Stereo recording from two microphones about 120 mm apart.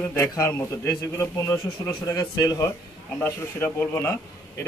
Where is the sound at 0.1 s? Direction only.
20° left (ahead or behind).